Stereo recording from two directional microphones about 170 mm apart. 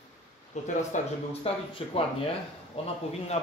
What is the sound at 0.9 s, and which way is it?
Speech, 45° left (ahead or behind).